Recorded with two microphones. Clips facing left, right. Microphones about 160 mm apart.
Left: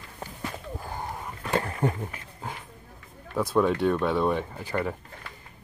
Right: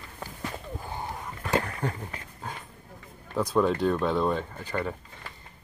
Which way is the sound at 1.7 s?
25° left (ahead or behind).